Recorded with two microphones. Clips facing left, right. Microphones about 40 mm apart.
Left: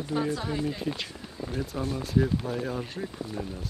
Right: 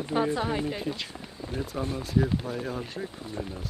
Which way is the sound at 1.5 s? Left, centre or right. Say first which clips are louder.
Even; centre.